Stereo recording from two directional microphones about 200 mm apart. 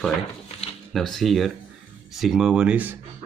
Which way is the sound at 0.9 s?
Centre (ahead or behind).